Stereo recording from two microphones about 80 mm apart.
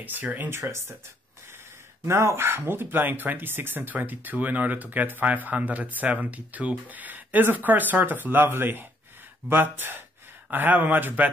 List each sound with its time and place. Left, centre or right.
0.0 s speech: right
0.6 s speech: right
2.0 s speech: right